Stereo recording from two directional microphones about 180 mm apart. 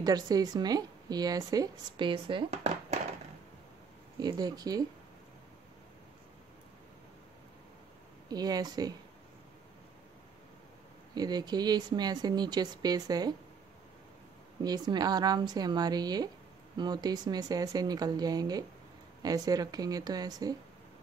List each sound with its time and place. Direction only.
0.0 s speech: 20° right (ahead or behind); by 3.0 s 35° right (ahead or behind)
4.2 s speech: 20° right (ahead or behind)
8.3 s speech: 20° right (ahead or behind)
11.1 s speech: 20° right (ahead or behind)
14.6 s speech: 20° right (ahead or behind)